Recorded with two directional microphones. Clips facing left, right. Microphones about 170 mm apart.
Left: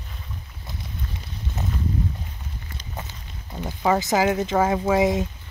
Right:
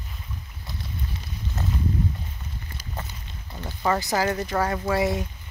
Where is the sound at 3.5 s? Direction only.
15° left (ahead or behind).